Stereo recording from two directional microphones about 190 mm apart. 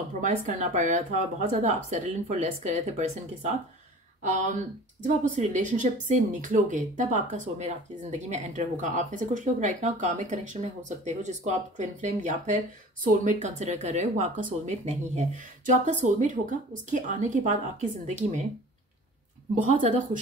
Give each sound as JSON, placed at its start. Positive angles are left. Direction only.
{"t": 0.2, "sound": "speech", "side_deg": -40}
{"t": 5.0, "sound": "speech", "side_deg": -40}
{"t": 19.6, "sound": "speech", "side_deg": -40}